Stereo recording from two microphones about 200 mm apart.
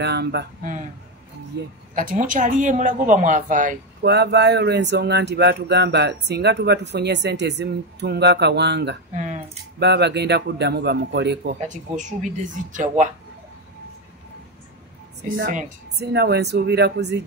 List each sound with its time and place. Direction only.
0.0 s speech: 55° right (ahead or behind)
2.0 s a woman's voice: 40° right (ahead or behind)
4.0 s speech: 55° right (ahead or behind)
9.1 s a sound: 35° right (ahead or behind)
9.8 s speech: 55° right (ahead or behind)
12.0 s a woman's voice: 40° right (ahead or behind)
15.9 s speech: 55° right (ahead or behind)